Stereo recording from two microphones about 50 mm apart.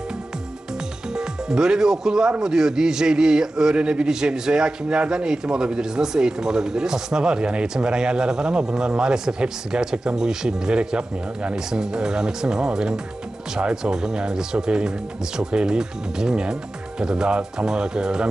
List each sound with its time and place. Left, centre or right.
1.1 s a man's voice: centre